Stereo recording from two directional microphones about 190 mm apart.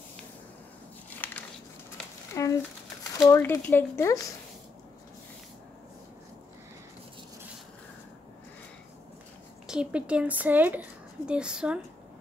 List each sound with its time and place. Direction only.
1.1 s a sound: 10° left (ahead or behind)
3.2 s speech: 15° left (ahead or behind)
9.7 s a woman's voice: 5° right (ahead or behind)